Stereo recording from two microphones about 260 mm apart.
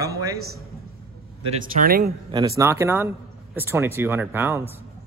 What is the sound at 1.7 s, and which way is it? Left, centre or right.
Speech, right.